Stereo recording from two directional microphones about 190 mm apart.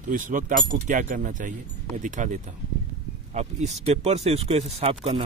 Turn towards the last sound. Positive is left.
turn(degrees=-30)  # may be behind; listen again after turning